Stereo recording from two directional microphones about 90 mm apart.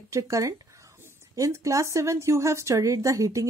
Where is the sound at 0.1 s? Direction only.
35° right (ahead or behind).